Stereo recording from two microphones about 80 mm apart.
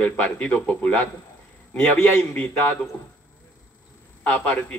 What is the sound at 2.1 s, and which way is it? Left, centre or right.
Speech, centre.